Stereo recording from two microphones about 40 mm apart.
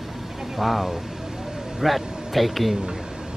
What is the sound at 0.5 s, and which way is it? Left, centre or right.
Speech, centre.